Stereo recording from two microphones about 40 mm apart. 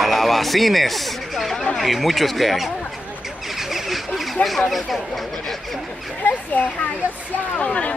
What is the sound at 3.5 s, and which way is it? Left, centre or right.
Goose, centre.